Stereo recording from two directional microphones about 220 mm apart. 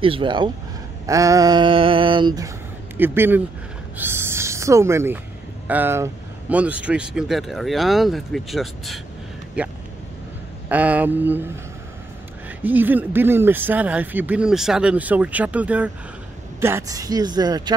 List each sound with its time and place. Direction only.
0.0 s a sound: 25° right (ahead or behind)
3.0 s speech: 10° right (ahead or behind)
12.4 s speech: 10° right (ahead or behind)